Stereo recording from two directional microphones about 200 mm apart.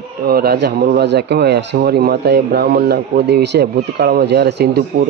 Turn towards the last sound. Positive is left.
turn(degrees=-55)  # may be behind; listen again after turning